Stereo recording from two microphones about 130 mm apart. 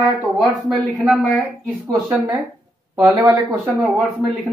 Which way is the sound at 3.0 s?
25° right (ahead or behind).